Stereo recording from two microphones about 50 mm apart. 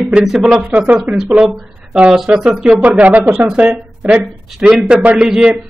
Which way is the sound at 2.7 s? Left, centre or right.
Right.